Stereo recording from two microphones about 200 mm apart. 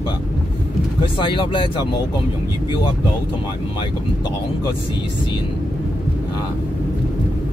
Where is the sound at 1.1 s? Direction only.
25° left (ahead or behind).